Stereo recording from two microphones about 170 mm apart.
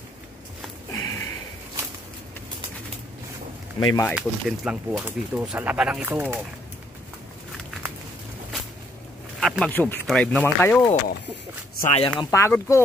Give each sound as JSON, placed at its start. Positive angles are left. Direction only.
{"t": 0.9, "sound": "a sound", "side_deg": 15}
{"t": 3.8, "sound": "speech", "side_deg": 25}
{"t": 4.1, "sound": "speech", "side_deg": -5}
{"t": 9.4, "sound": "speech", "side_deg": 5}
{"t": 11.8, "sound": "speech", "side_deg": 40}
{"t": 12.2, "sound": "speech", "side_deg": 15}